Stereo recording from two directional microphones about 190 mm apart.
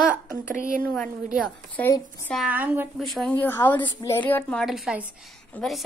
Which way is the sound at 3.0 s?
Centre (ahead or behind).